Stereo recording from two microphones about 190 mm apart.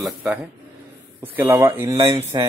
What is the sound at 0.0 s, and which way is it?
Speech, 5° right (ahead or behind).